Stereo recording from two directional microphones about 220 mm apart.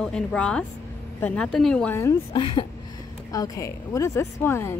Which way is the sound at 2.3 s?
20° left (ahead or behind).